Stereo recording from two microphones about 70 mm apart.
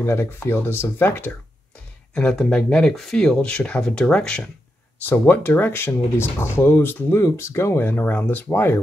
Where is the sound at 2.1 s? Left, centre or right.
Centre.